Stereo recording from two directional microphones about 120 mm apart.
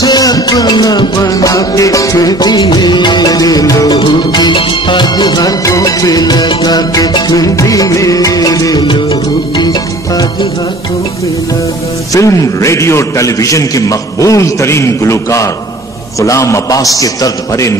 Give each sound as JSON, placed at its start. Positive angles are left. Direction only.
{"t": 0.0, "sound": "music", "side_deg": 35}
{"t": 12.1, "sound": "a man's voice", "side_deg": 25}